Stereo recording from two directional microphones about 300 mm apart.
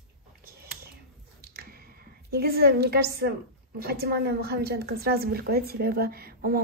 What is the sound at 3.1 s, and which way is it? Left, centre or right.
A woman's voice, right.